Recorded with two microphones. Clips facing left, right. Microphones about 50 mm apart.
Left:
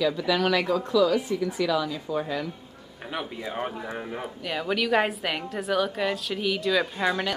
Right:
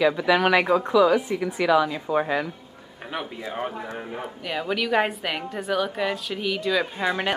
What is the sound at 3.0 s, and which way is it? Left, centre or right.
A woman's voice, centre.